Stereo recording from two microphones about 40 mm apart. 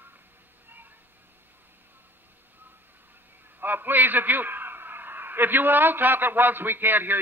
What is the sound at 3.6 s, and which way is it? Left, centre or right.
A man's voice, right.